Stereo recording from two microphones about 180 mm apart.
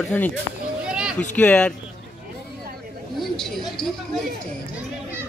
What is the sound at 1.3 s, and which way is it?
Speech, 5° left (ahead or behind).